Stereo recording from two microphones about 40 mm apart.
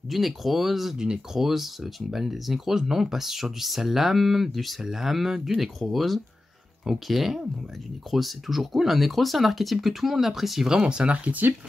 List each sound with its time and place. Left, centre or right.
0.1 s speech: centre
0.9 s speech: right
1.3 s speech: centre
10.7 s speech: right